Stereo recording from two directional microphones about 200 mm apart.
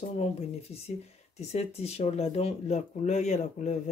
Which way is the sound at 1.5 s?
30° left (ahead or behind).